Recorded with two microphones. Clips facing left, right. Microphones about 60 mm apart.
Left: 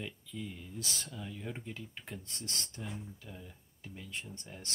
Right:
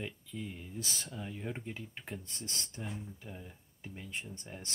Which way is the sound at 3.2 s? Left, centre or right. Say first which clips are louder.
Right 2 dB; centre.